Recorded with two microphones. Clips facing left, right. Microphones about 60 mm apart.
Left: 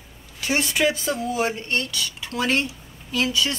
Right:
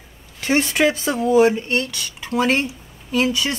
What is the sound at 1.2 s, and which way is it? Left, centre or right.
Speech, centre.